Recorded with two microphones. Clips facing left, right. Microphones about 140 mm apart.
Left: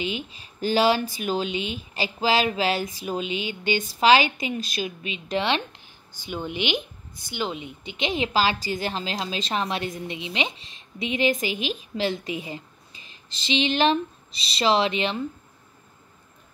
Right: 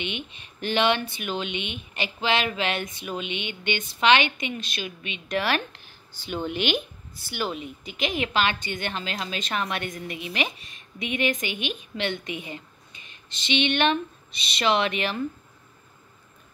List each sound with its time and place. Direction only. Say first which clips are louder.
0.0 s speech: left 3 dB; 35° left (ahead or behind)